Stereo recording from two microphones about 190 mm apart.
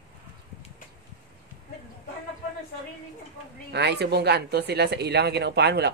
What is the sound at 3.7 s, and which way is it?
Speech, 60° right (ahead or behind).